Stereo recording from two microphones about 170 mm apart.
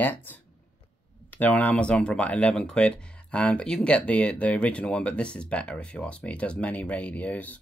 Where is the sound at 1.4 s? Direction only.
10° left (ahead or behind).